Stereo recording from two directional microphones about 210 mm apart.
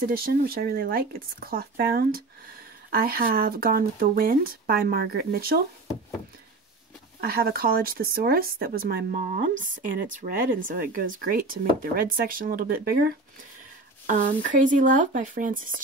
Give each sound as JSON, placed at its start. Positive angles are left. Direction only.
{"t": 0.0, "sound": "speech", "side_deg": -45}
{"t": 7.2, "sound": "speech", "side_deg": -45}
{"t": 10.7, "sound": "speech", "side_deg": -45}